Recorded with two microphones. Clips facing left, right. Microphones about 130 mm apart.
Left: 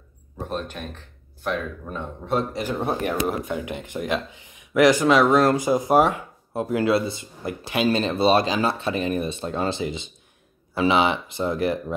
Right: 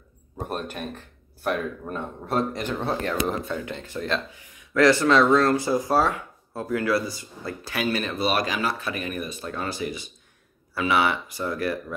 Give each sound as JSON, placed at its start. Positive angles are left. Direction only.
{"t": 0.4, "sound": "speech", "side_deg": -10}
{"t": 2.8, "sound": "speech", "side_deg": 15}